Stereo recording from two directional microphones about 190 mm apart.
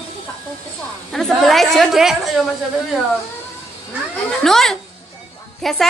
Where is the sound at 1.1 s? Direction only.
Centre (ahead or behind).